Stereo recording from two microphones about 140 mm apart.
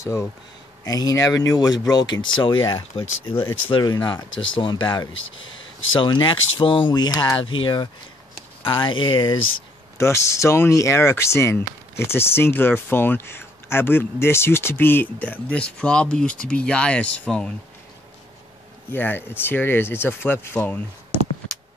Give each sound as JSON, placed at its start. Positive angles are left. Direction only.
{"t": 0.0, "sound": "speech", "side_deg": 20}
{"t": 9.9, "sound": "speech", "side_deg": 20}
{"t": 18.9, "sound": "speech", "side_deg": 15}